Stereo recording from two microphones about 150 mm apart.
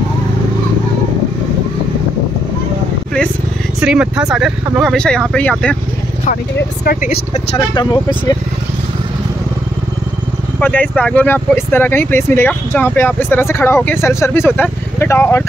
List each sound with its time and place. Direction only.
3.8 s speech: 5° right (ahead or behind)
6.8 s speech: 90° left
7.5 s speech: 30° left (ahead or behind)
10.6 s speech: 10° left (ahead or behind)